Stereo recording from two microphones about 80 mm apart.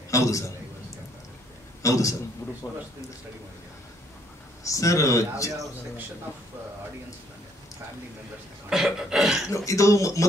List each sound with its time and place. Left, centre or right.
0.1 s a man's voice: left
1.8 s a man's voice: left
4.6 s speech: left
8.6 s a sound: centre
9.7 s speech: left